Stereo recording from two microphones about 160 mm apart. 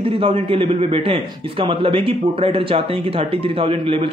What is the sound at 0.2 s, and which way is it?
A man's voice, 35° right (ahead or behind).